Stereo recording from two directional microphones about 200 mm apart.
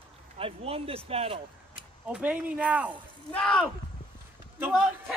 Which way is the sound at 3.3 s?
5° left (ahead or behind).